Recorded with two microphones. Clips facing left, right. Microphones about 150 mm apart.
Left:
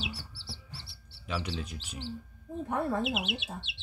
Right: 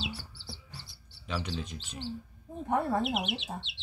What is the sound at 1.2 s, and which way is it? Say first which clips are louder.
Speech: even; 5° left (ahead or behind).